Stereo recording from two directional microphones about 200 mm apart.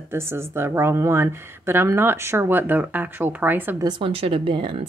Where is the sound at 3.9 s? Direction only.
25° right (ahead or behind).